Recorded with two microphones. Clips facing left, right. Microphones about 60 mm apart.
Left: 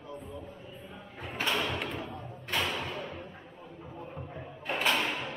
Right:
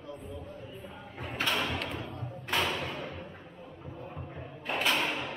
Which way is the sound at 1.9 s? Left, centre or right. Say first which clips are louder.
Left 1 dB; centre.